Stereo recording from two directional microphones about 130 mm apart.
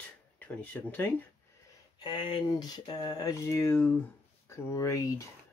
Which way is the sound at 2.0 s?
40° left (ahead or behind).